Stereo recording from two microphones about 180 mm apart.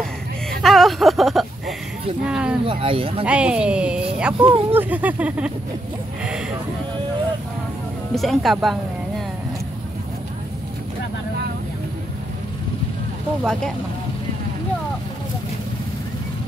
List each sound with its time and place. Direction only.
0.0 s a sound: centre (ahead or behind)
2.2 s speech: 5° right (ahead or behind)
2.6 s speech: 30° right (ahead or behind)
3.3 s speech: 5° right (ahead or behind)
4.4 s speech: 30° right (ahead or behind)
4.7 s speech: 10° right (ahead or behind)
8.1 s speech: centre (ahead or behind)
13.4 s speech: 5° left (ahead or behind)